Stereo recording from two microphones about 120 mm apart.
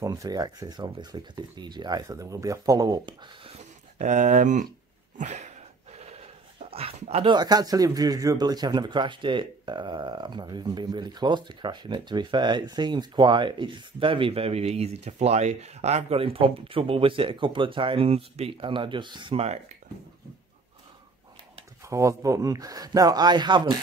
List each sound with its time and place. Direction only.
0.0 s speech: 30° right (ahead or behind)
4.0 s speech: 80° right
5.1 s a sound: 75° right (ahead or behind); by 7.2 s 55° right (ahead or behind)
7.2 s speech: 35° right (ahead or behind)
19.3 s speech: 60° right (ahead or behind)
21.8 s speech: 25° right (ahead or behind)